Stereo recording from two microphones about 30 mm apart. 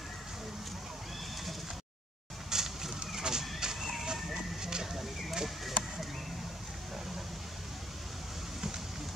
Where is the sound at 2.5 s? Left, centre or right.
Centre.